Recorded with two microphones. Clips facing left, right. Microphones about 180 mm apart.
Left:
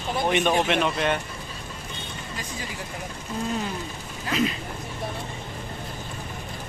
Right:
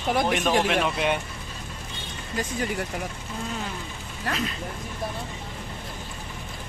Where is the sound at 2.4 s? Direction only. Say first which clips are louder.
Right 10 dB; 55° right (ahead or behind).